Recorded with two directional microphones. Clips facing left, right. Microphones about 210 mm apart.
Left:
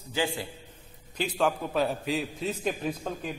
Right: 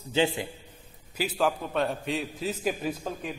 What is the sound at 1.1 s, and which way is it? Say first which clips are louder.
A man's voice: even; 5° right (ahead or behind).